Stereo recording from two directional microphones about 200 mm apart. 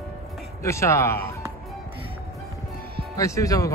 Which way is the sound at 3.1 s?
15° left (ahead or behind).